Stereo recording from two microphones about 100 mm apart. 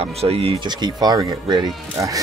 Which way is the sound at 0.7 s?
45° right (ahead or behind).